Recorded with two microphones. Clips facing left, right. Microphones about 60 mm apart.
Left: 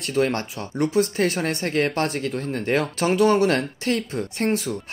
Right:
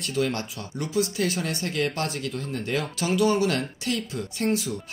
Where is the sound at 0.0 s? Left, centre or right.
Left.